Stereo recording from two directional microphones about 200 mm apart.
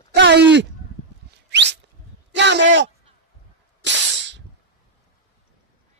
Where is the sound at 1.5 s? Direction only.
60° right (ahead or behind).